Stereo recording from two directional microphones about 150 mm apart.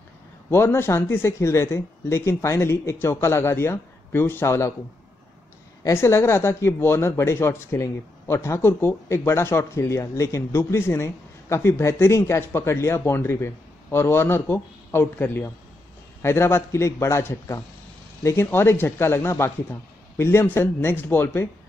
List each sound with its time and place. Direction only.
0.5 s speech: 15° left (ahead or behind)
5.9 s speech: 15° left (ahead or behind)